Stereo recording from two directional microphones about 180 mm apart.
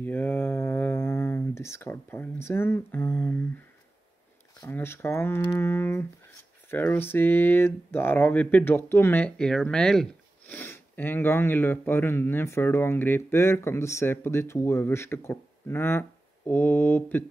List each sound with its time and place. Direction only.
0.0 s speech: 10° left (ahead or behind)